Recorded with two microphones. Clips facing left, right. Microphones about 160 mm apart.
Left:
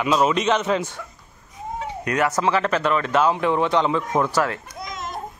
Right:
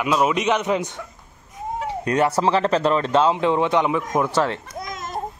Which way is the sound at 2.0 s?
30° right (ahead or behind).